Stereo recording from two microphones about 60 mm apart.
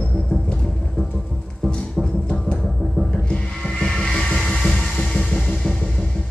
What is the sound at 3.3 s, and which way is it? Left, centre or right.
Music, centre.